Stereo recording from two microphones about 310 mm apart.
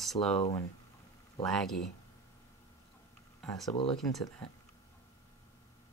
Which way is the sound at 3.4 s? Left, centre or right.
Centre.